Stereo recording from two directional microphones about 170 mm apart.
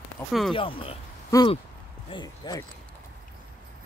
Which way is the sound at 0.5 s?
30° left (ahead or behind).